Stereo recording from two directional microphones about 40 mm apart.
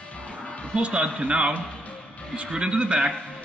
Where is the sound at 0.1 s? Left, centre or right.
Left.